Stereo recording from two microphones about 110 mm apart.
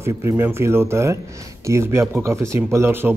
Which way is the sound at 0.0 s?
25° right (ahead or behind).